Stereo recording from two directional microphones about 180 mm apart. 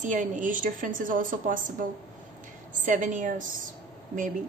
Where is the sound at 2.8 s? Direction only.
45° right (ahead or behind).